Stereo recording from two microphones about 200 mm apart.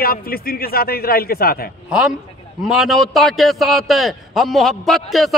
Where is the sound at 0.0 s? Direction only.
45° left (ahead or behind).